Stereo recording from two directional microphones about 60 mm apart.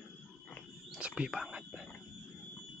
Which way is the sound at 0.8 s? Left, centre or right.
Centre.